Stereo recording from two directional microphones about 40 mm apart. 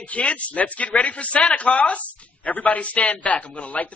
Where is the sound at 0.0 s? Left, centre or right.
Left.